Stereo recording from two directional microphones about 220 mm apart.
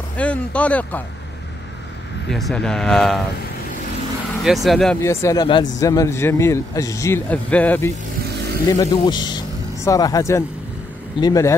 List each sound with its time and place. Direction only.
0.2 s speech: 5° left (ahead or behind)
2.2 s speech: centre (ahead or behind)
4.6 s a man's voice: centre (ahead or behind)
8.6 s a man's voice: 15° left (ahead or behind)